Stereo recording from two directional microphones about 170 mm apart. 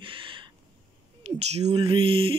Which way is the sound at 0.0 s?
30° right (ahead or behind).